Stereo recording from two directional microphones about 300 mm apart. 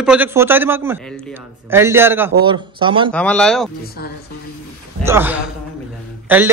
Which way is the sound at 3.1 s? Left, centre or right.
Centre.